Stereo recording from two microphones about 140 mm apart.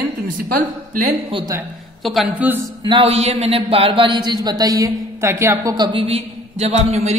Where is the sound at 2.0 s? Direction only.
Centre (ahead or behind).